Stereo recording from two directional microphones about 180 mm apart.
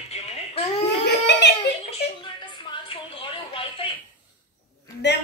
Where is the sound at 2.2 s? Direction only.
25° left (ahead or behind).